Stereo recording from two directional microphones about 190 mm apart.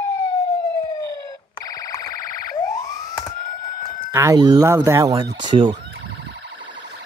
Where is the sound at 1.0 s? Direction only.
20° left (ahead or behind).